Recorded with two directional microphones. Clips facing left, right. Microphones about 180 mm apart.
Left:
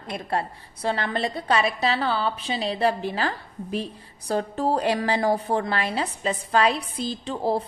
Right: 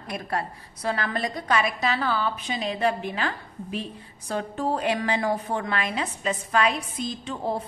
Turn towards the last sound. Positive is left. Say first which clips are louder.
# left 4 dB
turn(degrees=35)  # may be behind; listen again after turning